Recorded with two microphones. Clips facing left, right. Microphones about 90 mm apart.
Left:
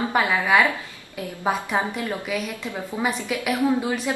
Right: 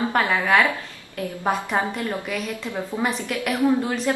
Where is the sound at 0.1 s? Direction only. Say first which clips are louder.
Left 1 dB; 5° left (ahead or behind).